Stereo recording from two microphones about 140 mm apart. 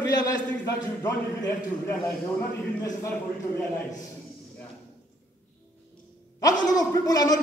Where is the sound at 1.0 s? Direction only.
20° left (ahead or behind).